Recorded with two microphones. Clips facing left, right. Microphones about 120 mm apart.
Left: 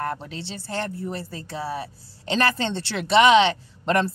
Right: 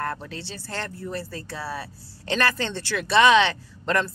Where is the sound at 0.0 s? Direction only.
20° left (ahead or behind).